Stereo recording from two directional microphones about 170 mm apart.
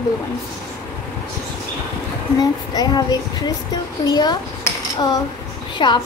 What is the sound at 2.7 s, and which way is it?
A woman's voice, 25° left (ahead or behind).